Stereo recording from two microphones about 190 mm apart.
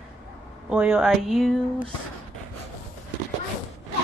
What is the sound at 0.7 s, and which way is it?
Speech, 5° right (ahead or behind).